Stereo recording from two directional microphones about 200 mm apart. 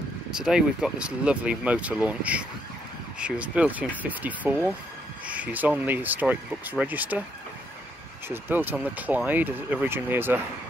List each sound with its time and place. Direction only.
0.3 s speech: 5° right (ahead or behind)
8.3 s speech: 10° right (ahead or behind)